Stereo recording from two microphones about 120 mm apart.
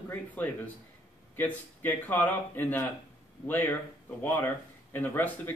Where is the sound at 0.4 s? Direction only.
15° left (ahead or behind).